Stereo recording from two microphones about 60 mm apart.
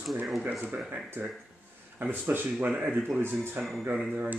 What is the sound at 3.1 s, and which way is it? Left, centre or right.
Speech, right.